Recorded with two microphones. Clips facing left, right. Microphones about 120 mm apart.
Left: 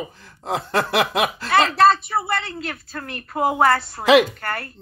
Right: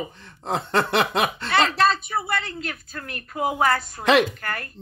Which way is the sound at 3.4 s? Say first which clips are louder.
Left 4 dB; 45° left (ahead or behind).